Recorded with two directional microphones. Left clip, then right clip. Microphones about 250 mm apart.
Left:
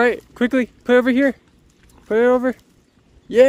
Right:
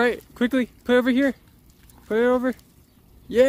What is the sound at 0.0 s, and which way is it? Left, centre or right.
Speech, centre.